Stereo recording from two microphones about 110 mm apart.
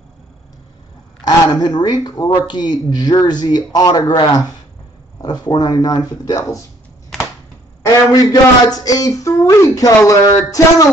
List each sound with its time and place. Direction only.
1.2 s speech: 40° left (ahead or behind)
7.8 s speech: 35° left (ahead or behind)